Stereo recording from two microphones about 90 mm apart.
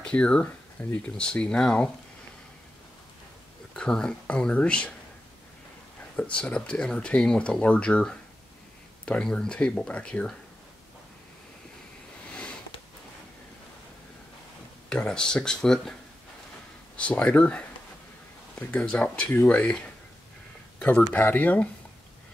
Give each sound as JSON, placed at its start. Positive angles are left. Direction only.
{"t": 0.0, "sound": "a sound", "side_deg": 10}
{"t": 1.0, "sound": "speech", "side_deg": 10}
{"t": 3.7, "sound": "speech", "side_deg": 10}
{"t": 6.1, "sound": "speech", "side_deg": 15}
{"t": 12.3, "sound": "sniff", "side_deg": 10}
{"t": 14.9, "sound": "speech", "side_deg": 10}
{"t": 18.7, "sound": "speech", "side_deg": 15}